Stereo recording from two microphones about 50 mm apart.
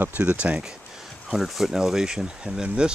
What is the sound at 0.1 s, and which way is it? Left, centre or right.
Speech, right.